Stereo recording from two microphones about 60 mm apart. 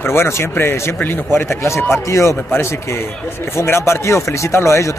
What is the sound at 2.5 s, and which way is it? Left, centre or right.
Speech, left.